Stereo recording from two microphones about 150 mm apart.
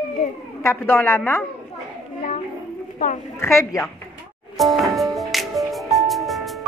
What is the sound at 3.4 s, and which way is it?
Speech, 20° left (ahead or behind).